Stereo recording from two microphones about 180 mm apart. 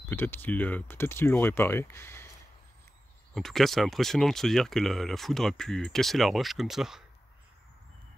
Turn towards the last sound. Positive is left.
turn(degrees=0)  # may be behind; listen again after turning